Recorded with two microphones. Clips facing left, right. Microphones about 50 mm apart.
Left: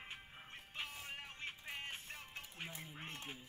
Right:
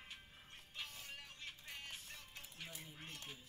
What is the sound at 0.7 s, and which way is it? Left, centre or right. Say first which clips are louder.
Music: left 4 dB; left.